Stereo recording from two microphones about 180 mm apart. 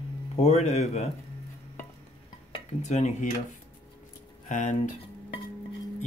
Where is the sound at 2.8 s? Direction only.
40° left (ahead or behind).